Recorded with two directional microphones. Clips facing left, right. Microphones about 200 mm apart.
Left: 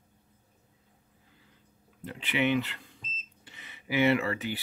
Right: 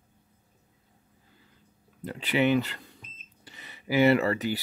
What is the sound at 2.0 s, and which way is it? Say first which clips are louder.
Speech: right 4 dB; 40° right (ahead or behind).